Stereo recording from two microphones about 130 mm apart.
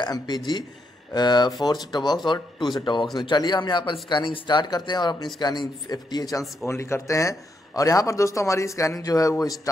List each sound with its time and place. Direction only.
0.0 s a man's voice: 35° left (ahead or behind)